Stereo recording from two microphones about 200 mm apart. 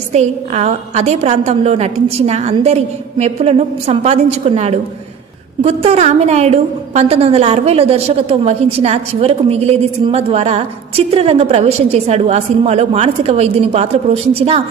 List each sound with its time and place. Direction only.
0.1 s a woman's voice: 35° right (ahead or behind)